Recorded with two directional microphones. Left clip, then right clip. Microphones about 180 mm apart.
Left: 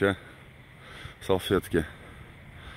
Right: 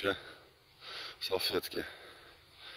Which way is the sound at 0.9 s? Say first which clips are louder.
Left 8 dB; 15° left (ahead or behind).